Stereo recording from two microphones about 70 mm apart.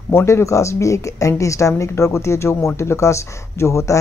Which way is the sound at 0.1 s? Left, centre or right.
Left.